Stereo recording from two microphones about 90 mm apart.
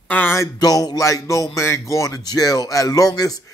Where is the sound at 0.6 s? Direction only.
45° left (ahead or behind).